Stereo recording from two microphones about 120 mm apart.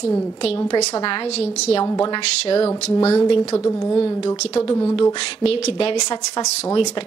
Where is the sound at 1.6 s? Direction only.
55° left (ahead or behind).